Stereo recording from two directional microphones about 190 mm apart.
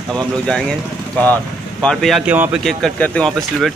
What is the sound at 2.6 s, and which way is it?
Speech, 5° left (ahead or behind).